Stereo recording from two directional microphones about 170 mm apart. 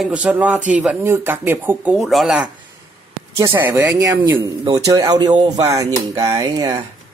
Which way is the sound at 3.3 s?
15° right (ahead or behind).